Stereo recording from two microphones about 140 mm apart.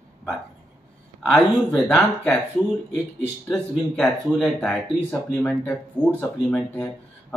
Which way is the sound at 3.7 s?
Centre (ahead or behind).